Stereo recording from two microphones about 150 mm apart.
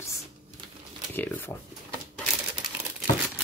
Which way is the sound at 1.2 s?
15° left (ahead or behind).